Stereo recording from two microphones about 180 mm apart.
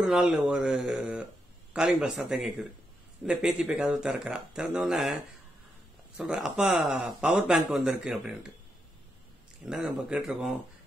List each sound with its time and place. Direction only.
0.0 s speech: centre (ahead or behind)
9.7 s speech: 5° right (ahead or behind)